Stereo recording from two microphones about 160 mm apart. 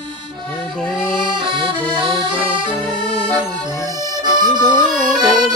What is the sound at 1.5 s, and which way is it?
Accordion, 30° right (ahead or behind).